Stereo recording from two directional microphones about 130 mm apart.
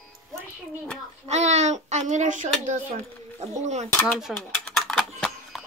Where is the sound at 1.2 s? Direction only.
60° right (ahead or behind).